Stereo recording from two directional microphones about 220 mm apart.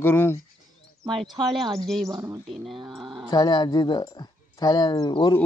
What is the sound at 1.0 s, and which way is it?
Speech, 20° right (ahead or behind).